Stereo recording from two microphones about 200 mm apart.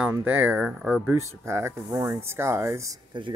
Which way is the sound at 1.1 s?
15° right (ahead or behind).